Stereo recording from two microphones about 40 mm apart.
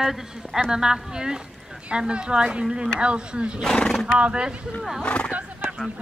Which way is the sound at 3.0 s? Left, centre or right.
Right.